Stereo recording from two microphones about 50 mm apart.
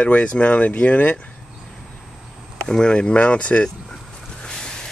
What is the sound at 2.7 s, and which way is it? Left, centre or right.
Speech, centre.